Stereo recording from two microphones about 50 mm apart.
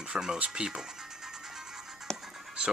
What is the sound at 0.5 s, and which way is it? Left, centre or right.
Music, centre.